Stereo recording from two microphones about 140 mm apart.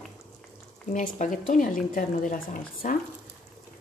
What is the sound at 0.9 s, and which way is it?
Speech, 65° left (ahead or behind).